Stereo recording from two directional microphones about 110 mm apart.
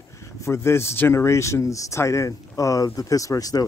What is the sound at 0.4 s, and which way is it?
Speech, 25° left (ahead or behind).